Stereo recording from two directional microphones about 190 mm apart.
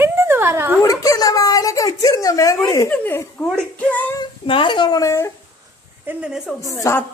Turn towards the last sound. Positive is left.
turn(degrees=15)  # may be behind; listen again after turning